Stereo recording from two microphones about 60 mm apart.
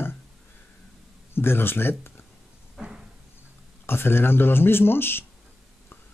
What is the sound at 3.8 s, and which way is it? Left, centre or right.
Speech, left.